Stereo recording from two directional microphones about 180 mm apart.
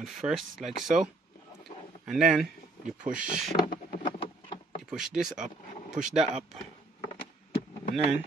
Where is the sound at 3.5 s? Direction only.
25° left (ahead or behind).